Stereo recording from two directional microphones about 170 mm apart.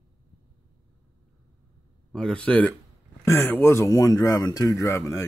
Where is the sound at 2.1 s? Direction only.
5° left (ahead or behind).